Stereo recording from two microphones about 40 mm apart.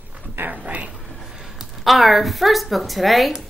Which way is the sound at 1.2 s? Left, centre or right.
Centre.